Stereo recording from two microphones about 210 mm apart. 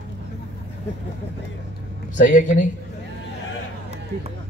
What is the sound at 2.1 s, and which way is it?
Speech, 40° left (ahead or behind).